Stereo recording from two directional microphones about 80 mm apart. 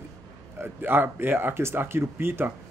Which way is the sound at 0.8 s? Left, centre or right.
Right.